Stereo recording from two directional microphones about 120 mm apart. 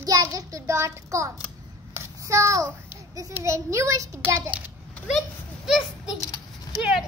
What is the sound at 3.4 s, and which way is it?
Speech, 25° right (ahead or behind).